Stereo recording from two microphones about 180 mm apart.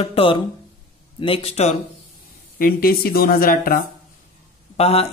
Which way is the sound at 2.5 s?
55° left (ahead or behind).